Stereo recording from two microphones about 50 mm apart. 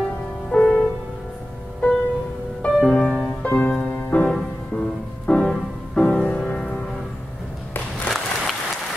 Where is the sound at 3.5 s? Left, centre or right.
Left.